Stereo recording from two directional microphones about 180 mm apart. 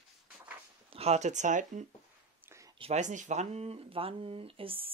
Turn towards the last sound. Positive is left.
turn(degrees=-30)  # may be behind; listen again after turning